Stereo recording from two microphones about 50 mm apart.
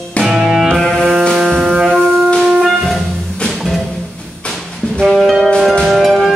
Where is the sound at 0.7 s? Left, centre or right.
Centre.